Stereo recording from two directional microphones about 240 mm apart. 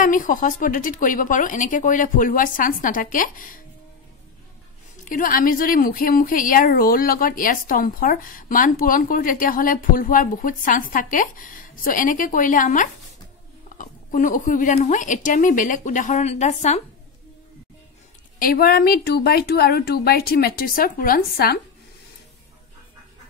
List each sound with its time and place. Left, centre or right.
0.0 s a woman's voice: left
5.0 s a woman's voice: left
18.4 s a woman's voice: left